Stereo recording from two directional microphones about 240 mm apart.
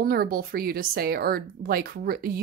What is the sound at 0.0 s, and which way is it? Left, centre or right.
Speech, right.